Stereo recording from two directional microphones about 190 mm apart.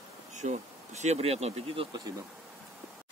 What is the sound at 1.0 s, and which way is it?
Speech, 35° right (ahead or behind).